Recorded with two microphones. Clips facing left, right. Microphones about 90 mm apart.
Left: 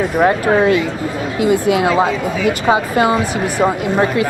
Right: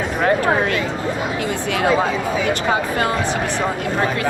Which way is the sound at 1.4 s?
10° left (ahead or behind).